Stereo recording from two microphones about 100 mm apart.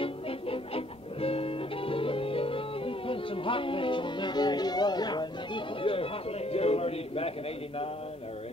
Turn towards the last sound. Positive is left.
turn(degrees=75)  # may be behind; listen again after turning